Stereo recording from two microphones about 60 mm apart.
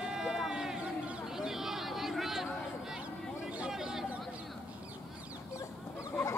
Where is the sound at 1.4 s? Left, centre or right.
Centre.